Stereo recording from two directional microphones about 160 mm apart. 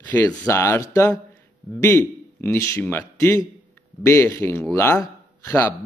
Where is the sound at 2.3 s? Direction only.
15° left (ahead or behind).